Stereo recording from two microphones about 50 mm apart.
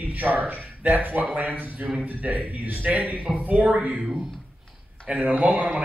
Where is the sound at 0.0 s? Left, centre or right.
Right.